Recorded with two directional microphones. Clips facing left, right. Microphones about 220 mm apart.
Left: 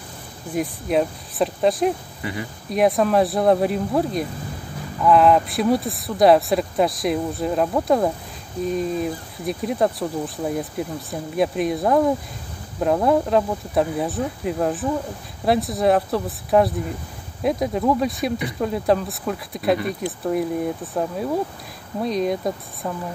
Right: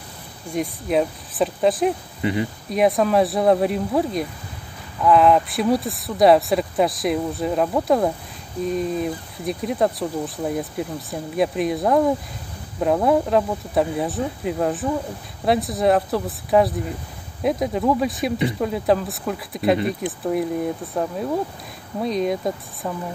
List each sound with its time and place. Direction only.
0.5 s speech: centre (ahead or behind)
2.2 s speech: 25° right (ahead or behind)
2.7 s speech: centre (ahead or behind)